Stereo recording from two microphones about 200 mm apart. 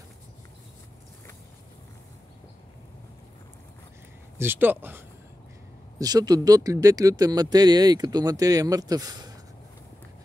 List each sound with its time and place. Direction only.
4.4 s speech: 10° right (ahead or behind)